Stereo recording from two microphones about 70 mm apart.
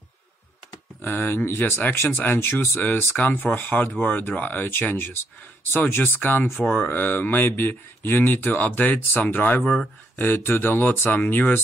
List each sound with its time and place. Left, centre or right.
1.0 s speech: left
2.8 s speech: left
6.9 s speech: left
9.6 s speech: centre
10.1 s speech: left